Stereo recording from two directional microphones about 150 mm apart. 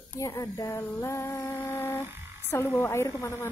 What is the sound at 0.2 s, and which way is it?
A woman's voice, 20° left (ahead or behind).